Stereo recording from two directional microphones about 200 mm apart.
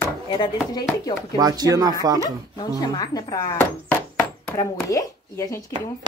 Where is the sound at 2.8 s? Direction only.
20° left (ahead or behind).